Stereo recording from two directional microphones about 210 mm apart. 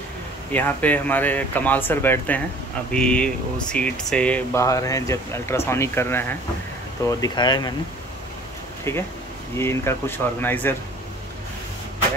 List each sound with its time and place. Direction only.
0.5 s speech: 10° left (ahead or behind)
8.9 s speech: 10° left (ahead or behind)